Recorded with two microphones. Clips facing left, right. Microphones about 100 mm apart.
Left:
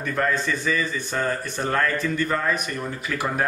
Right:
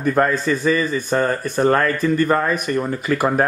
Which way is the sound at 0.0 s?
40° right (ahead or behind).